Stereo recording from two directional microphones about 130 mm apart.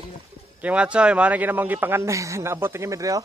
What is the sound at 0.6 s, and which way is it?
Speech, 10° right (ahead or behind).